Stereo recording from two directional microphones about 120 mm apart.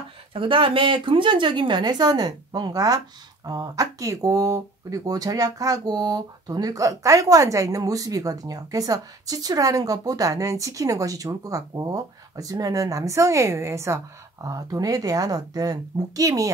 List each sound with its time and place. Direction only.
0.3 s a woman's voice: 45° right (ahead or behind); by 16.4 s 30° right (ahead or behind)